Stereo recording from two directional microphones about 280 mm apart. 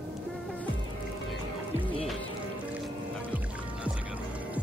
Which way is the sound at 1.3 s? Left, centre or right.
Centre.